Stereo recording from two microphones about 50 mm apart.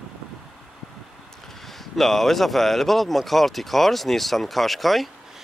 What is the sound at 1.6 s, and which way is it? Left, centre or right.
Speech, centre.